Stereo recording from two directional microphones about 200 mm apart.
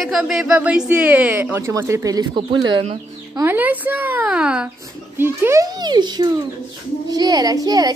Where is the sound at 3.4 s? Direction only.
10° right (ahead or behind).